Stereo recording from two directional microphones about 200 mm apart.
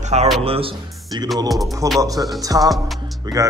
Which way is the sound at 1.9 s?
15° right (ahead or behind).